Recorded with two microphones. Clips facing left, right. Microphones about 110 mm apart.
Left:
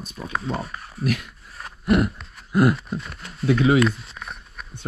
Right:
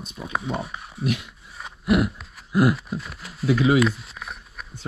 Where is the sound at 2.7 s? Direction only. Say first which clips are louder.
Left 1 dB; centre (ahead or behind).